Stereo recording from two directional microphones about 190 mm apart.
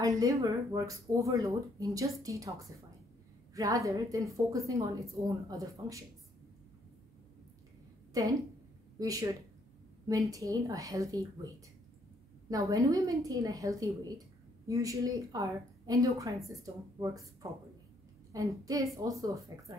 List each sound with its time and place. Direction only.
0.0 s speech: 15° right (ahead or behind)
3.5 s speech: 15° right (ahead or behind)
8.2 s a woman's voice: 20° right (ahead or behind)